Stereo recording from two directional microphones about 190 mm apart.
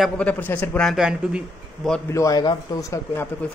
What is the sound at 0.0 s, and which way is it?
A man's voice, 5° left (ahead or behind).